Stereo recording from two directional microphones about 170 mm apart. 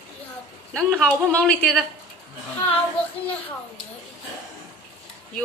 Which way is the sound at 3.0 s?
35° left (ahead or behind).